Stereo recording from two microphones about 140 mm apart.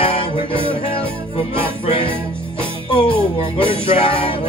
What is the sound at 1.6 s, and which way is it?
Music, 45° left (ahead or behind).